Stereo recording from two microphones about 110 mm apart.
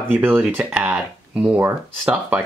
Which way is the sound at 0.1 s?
15° right (ahead or behind).